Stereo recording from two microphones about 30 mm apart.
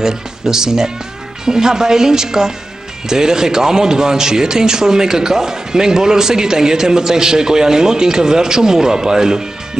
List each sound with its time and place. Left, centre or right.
0.0 s a man's voice: centre